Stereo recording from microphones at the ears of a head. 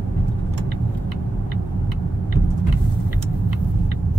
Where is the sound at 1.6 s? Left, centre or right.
Right.